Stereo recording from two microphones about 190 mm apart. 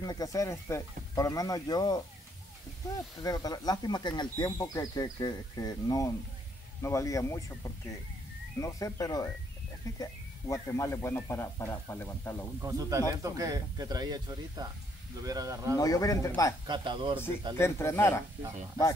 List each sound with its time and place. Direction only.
0.0 s speech: 20° left (ahead or behind)
3.2 s speech: 20° left (ahead or behind)
10.5 s speech: 15° left (ahead or behind)
12.6 s speech: 20° right (ahead or behind)
15.8 s speech: 20° left (ahead or behind)
16.6 s speech: 25° right (ahead or behind)
17.6 s speech: 15° left (ahead or behind)